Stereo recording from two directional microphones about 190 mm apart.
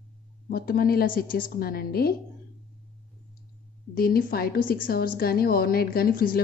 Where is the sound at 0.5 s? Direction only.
50° left (ahead or behind).